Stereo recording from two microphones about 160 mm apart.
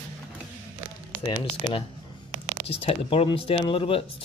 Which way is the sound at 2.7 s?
35° left (ahead or behind).